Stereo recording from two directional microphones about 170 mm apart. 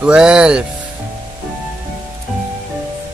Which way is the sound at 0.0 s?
5° right (ahead or behind).